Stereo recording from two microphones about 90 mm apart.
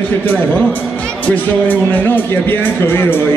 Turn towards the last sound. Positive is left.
turn(degrees=25)  # may be behind; listen again after turning